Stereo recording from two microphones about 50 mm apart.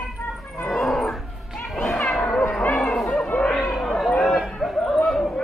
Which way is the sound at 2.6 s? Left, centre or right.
Left.